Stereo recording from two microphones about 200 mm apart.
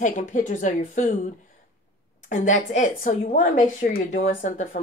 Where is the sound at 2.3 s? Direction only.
40° left (ahead or behind).